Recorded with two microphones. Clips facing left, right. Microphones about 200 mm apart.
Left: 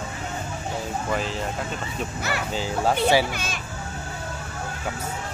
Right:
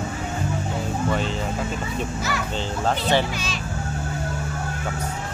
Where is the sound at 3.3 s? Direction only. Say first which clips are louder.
Right 2 dB; 55° left (ahead or behind).